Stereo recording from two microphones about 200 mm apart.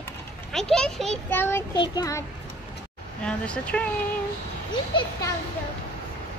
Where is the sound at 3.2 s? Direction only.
5° left (ahead or behind).